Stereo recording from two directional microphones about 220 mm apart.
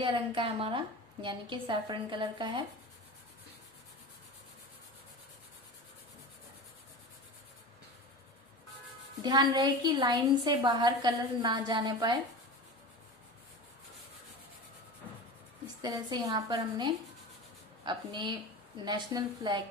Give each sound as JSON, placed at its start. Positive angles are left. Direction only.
{"t": 0.0, "sound": "a woman's voice", "side_deg": -20}
{"t": 9.2, "sound": "a woman's voice", "side_deg": -20}
{"t": 15.8, "sound": "a woman's voice", "side_deg": -15}